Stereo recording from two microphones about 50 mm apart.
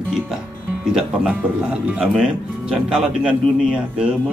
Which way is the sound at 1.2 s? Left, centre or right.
Right.